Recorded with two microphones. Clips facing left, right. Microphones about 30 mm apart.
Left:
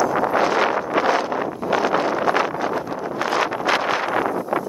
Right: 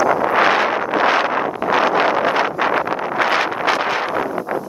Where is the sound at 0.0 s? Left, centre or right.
Right.